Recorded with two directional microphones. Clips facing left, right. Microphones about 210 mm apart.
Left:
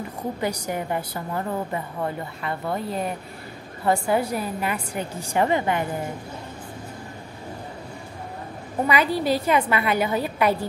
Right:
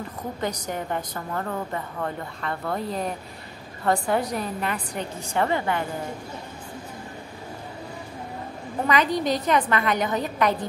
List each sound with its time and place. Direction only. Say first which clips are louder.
0.4 s a woman's voice: left 1 dB; 10° left (ahead or behind)
2.6 s a woman's voice: left 1 dB; centre (ahead or behind)
8.8 s a woman's voice: left 1 dB; 10° left (ahead or behind)